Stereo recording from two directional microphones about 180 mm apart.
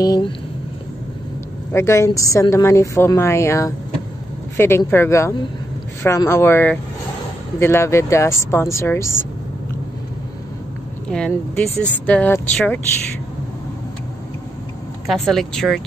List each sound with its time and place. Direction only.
0.0 s speech: 20° left (ahead or behind)
1.7 s a woman's voice: 15° left (ahead or behind)
11.1 s a woman's voice: 5° left (ahead or behind)
15.0 s speech: centre (ahead or behind)